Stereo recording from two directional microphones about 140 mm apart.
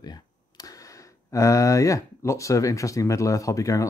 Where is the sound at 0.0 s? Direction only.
30° left (ahead or behind).